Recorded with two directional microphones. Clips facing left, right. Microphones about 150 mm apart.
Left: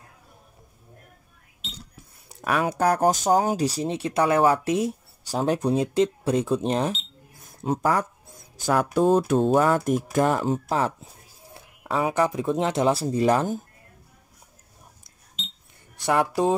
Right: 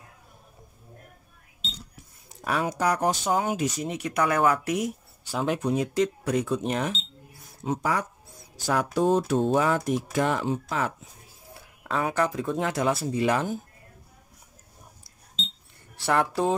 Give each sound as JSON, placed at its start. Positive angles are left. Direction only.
{"t": 2.4, "sound": "speech", "side_deg": 65}
{"t": 7.4, "sound": "speech", "side_deg": 50}
{"t": 11.5, "sound": "speech", "side_deg": 20}
{"t": 16.0, "sound": "speech", "side_deg": 15}